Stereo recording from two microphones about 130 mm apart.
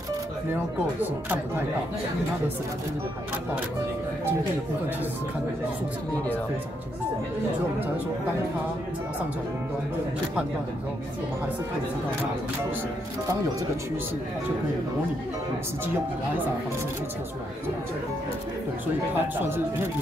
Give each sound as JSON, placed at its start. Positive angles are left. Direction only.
{"t": 19.1, "sound": "speech", "side_deg": -15}